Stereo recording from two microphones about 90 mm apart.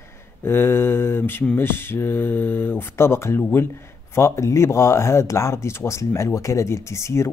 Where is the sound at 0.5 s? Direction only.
25° left (ahead or behind).